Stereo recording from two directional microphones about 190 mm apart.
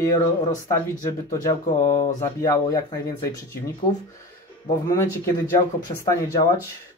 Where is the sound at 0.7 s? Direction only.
15° left (ahead or behind).